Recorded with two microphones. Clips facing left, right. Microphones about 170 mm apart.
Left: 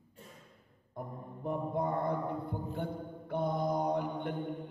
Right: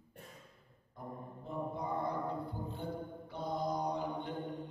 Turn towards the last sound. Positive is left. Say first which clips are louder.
# left 4 dB
turn(degrees=60)  # may be behind; listen again after turning